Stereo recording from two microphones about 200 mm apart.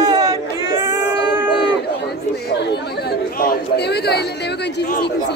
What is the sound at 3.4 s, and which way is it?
Chatter, 50° left (ahead or behind).